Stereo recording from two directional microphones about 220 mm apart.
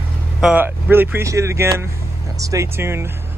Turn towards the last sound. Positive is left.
turn(degrees=-10)  # may be behind; listen again after turning